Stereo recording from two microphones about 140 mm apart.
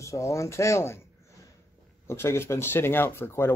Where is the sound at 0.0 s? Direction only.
20° left (ahead or behind).